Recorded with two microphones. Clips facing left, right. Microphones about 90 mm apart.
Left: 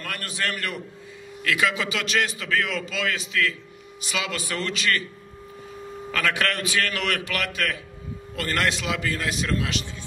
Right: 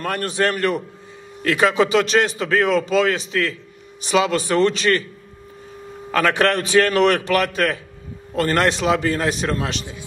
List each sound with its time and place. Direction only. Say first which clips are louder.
0.0 s a man's voice: right 9 dB; 35° right (ahead or behind)
6.1 s a man's voice: right 8 dB; 35° right (ahead or behind)